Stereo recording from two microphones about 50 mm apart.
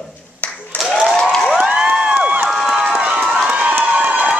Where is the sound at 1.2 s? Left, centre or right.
Centre.